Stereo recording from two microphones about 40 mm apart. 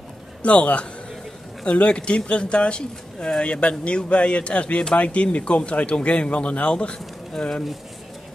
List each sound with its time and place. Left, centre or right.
0.4 s speech: left